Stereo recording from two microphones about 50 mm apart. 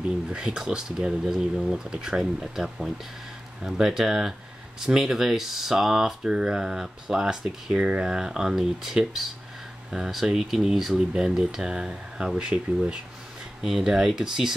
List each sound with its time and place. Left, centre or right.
0.3 s speech: centre
13.6 s speech: centre